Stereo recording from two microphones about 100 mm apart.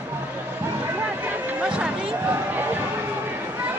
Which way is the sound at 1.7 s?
10° right (ahead or behind).